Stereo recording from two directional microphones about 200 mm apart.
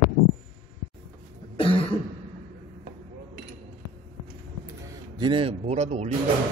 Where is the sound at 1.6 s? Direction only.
25° left (ahead or behind).